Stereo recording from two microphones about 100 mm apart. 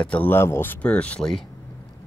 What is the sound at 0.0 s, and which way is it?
Speech, 15° left (ahead or behind).